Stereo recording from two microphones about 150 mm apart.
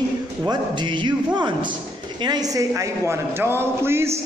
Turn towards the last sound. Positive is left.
turn(degrees=-15)  # may be behind; listen again after turning